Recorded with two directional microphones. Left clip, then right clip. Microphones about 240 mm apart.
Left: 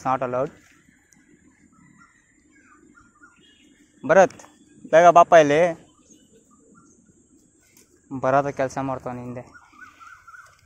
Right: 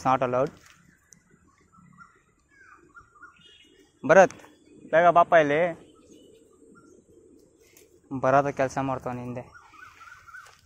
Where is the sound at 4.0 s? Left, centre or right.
Centre.